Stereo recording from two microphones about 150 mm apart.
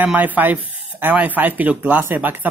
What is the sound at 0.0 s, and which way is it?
Speech, 10° right (ahead or behind).